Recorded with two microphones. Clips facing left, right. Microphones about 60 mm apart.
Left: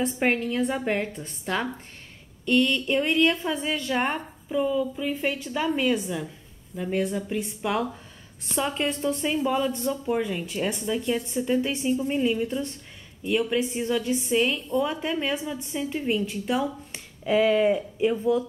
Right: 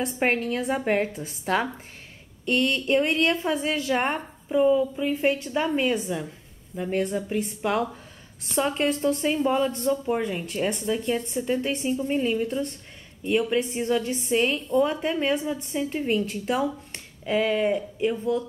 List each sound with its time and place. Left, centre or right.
0.0 s a woman's voice: centre
4.6 s speech: centre
5.1 s a woman's voice: centre
7.6 s speech: centre
8.5 s a woman's voice: centre